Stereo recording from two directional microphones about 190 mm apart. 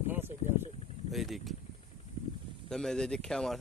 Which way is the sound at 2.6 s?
5° left (ahead or behind).